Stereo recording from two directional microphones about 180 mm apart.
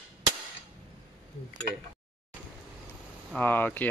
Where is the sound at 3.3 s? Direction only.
10° left (ahead or behind).